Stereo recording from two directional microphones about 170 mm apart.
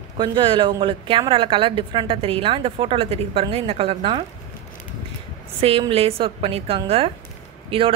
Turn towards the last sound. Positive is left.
turn(degrees=-30)  # may be behind; listen again after turning